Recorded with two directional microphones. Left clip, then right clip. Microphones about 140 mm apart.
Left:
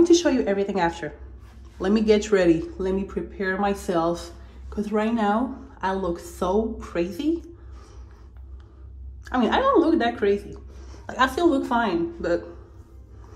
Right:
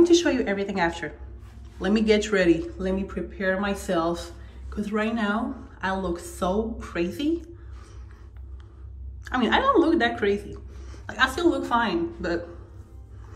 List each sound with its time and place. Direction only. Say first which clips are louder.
0.0 s speech: left 1 dB; 55° left (ahead or behind)
9.2 s a woman's voice: left 1 dB; 40° left (ahead or behind)
10.9 s a woman's voice: left 1 dB; 60° left (ahead or behind)